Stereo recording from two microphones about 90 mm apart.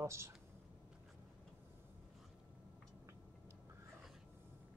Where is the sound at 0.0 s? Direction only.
30° right (ahead or behind).